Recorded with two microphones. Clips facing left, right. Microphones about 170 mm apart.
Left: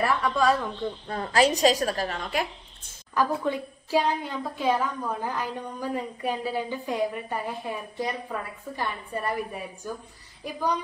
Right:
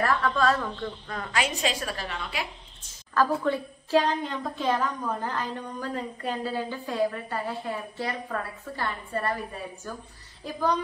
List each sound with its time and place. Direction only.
0.0 s a woman's voice: 10° left (ahead or behind)
1.0 s a woman's voice: 30° left (ahead or behind)
3.2 s a woman's voice: 15° left (ahead or behind)